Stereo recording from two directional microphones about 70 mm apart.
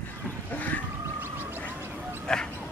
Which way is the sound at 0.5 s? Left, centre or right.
Left.